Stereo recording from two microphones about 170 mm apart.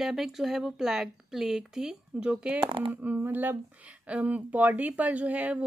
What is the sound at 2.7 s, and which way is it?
Speech, 30° right (ahead or behind).